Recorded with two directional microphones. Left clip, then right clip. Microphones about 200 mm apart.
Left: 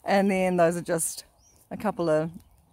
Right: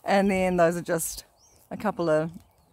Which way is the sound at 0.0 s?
Centre (ahead or behind).